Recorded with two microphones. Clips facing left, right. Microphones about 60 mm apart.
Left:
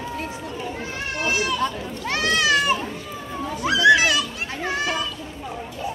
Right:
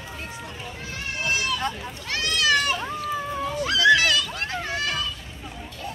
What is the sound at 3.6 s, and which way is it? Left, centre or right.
Children playing, centre.